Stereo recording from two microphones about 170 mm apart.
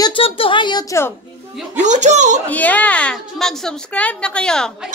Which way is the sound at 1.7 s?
45° right (ahead or behind).